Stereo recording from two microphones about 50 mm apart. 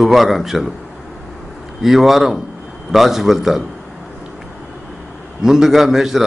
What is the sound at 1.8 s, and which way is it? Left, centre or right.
A man's voice, centre.